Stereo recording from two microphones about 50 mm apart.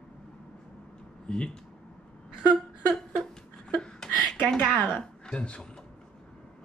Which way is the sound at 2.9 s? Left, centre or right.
Centre.